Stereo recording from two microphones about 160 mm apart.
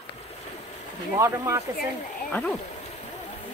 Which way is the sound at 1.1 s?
20° right (ahead or behind).